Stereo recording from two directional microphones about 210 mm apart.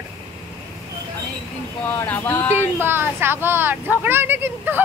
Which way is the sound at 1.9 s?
10° left (ahead or behind).